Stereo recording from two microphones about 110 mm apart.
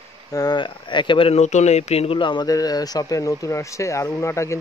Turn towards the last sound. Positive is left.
turn(degrees=25)  # may be behind; listen again after turning